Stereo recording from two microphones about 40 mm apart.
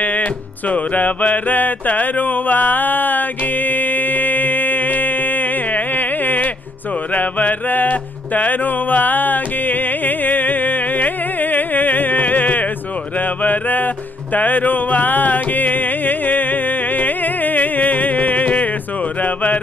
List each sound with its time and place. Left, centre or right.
0.0 s music: left